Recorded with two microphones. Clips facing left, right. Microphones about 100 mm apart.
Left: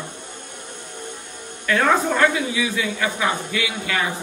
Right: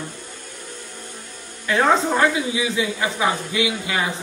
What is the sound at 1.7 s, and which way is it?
A man's voice, 20° right (ahead or behind).